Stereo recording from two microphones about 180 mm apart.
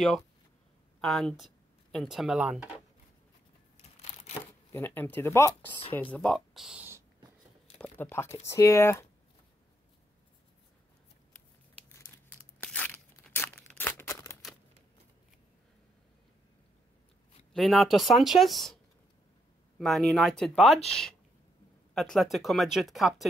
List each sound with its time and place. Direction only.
1.0 s speech: centre (ahead or behind)
3.9 s a sound: 35° left (ahead or behind)
4.7 s speech: 10° left (ahead or behind); by 7.0 s 5° right (ahead or behind)
7.8 s speech: 15° left (ahead or behind)
11.9 s crumpling: 10° left (ahead or behind)
12.6 s tearing: 10° left (ahead or behind)
17.5 s speech: centre (ahead or behind)
19.8 s speech: centre (ahead or behind)
21.9 s speech: centre (ahead or behind)